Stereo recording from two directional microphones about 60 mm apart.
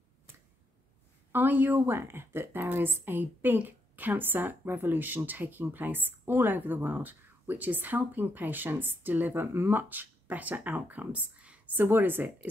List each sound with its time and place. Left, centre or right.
1.3 s a woman's voice: right
11.7 s a woman's voice: right